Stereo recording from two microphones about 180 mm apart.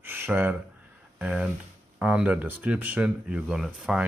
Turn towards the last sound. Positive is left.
turn(degrees=-5)  # may be behind; listen again after turning